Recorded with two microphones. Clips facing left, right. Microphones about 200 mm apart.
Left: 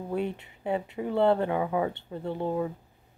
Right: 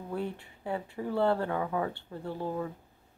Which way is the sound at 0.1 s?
20° left (ahead or behind).